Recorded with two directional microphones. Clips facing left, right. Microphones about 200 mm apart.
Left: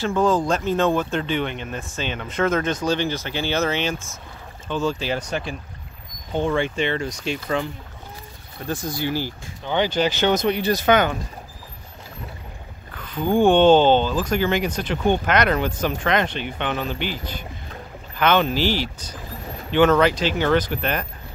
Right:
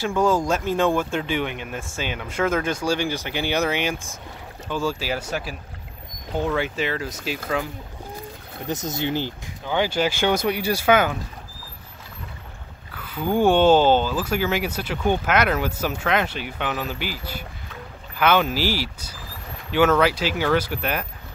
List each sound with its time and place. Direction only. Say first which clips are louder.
0.0 s speech: left 1 dB; 10° right (ahead or behind)
8.6 s speech: even; 20° right (ahead or behind)
9.7 s speech: left 1 dB; 10° right (ahead or behind)
12.9 s speech: left 2 dB; 10° right (ahead or behind)